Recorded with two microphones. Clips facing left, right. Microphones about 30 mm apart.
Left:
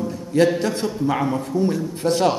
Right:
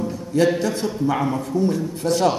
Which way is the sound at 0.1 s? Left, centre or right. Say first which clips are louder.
Left 2 dB; centre.